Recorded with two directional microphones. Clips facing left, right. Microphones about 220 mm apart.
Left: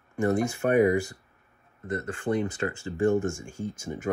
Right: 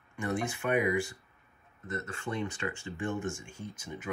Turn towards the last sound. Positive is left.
turn(degrees=45)  # may be behind; listen again after turning